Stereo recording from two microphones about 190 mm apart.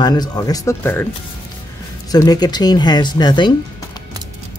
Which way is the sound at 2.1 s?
20° left (ahead or behind).